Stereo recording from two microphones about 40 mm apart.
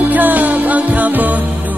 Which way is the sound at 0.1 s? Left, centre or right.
Right.